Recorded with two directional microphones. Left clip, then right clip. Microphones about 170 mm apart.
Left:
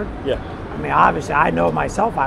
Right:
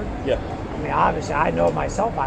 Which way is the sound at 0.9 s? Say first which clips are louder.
Left 5 dB; 90° left.